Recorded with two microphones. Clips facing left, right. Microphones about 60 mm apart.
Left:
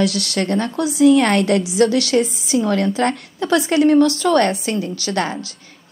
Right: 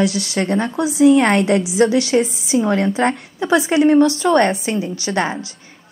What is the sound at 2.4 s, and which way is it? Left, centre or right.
A woman's voice, right.